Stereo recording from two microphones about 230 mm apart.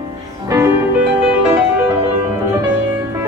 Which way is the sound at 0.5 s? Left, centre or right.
Centre.